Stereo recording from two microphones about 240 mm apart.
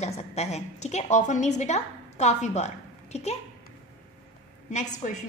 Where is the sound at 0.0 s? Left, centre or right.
Left.